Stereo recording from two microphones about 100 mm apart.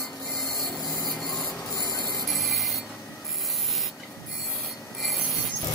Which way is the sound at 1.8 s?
40° left (ahead or behind).